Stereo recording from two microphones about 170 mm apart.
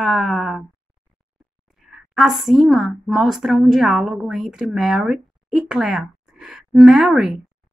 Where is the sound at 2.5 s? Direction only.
Centre (ahead or behind).